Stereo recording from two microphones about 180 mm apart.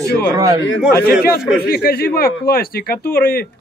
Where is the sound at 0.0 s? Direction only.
15° right (ahead or behind).